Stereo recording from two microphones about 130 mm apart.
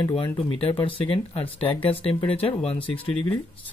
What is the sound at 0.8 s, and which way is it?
Speech, 40° left (ahead or behind).